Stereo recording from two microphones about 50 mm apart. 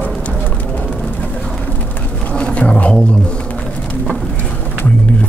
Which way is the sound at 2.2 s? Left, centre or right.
Left.